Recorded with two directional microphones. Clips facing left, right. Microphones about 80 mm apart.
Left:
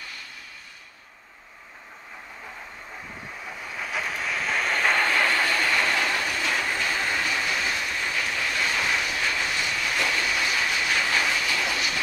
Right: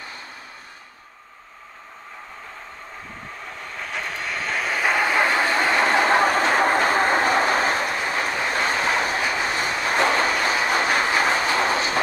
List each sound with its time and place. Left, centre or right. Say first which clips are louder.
3.3 s train: even; centre
5.1 s train: right 4 dB; right
9.2 s vehicle: right 4 dB; right